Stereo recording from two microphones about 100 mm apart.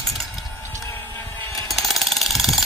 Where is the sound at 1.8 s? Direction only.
Centre (ahead or behind).